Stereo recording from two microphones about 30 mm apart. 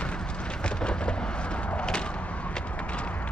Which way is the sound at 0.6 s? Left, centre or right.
Left.